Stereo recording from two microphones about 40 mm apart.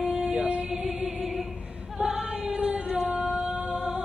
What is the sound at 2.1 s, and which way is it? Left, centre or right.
Choir, right.